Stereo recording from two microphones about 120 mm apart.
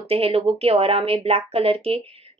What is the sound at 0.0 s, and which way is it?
Speech, 55° right (ahead or behind).